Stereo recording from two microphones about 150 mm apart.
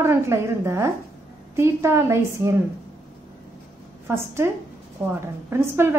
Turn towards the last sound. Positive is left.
turn(degrees=-15)  # may be behind; listen again after turning